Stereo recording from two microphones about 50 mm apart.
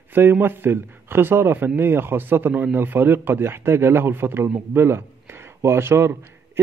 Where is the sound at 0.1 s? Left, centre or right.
Right.